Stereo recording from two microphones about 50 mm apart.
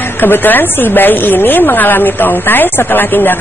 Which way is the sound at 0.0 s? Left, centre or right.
Left.